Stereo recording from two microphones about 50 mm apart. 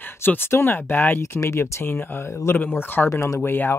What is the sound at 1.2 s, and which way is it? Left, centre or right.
Speech, left.